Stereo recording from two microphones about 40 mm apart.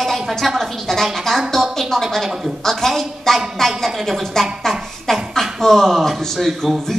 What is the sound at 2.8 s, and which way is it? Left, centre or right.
A woman's voice, centre.